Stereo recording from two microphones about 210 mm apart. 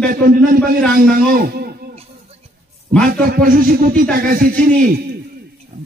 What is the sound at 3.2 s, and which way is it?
A man's voice, 45° right (ahead or behind).